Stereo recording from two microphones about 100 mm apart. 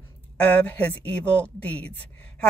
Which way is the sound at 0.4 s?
15° left (ahead or behind).